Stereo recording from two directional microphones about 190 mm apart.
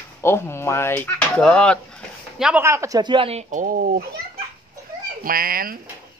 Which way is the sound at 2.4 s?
10° right (ahead or behind).